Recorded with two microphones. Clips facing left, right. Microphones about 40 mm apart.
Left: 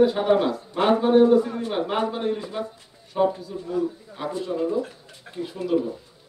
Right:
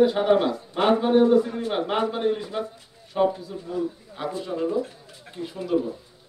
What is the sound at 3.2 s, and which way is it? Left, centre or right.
Speech, right.